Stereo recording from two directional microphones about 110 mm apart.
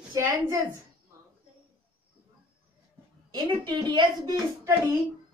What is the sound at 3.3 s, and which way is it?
Speech, 45° right (ahead or behind).